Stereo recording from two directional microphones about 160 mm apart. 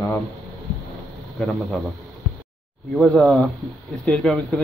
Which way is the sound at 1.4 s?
Centre (ahead or behind).